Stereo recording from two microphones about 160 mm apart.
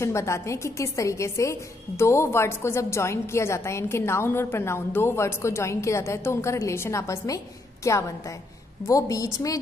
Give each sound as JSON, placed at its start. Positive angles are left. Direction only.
{"t": 0.0, "sound": "a woman's voice", "side_deg": 20}